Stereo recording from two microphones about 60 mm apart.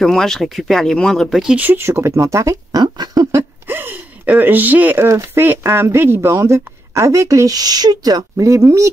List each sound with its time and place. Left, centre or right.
0.0 s speech: centre
1.8 s speech: right
3.6 s gasp: right
5.0 s speech: right
5.4 s speech: right
6.3 s speech: right